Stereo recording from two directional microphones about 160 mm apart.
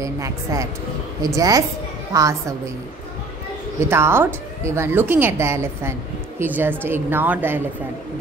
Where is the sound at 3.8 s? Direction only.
15° right (ahead or behind).